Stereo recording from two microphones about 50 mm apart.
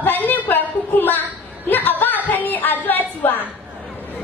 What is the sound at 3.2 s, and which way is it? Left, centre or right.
Speech, left.